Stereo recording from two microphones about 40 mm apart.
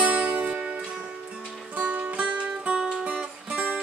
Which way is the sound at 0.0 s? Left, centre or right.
Right.